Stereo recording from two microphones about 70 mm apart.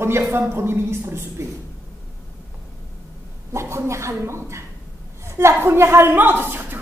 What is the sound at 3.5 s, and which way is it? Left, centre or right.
A man's voice, right.